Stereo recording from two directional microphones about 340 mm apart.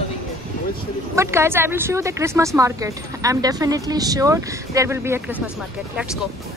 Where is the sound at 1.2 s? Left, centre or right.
Centre.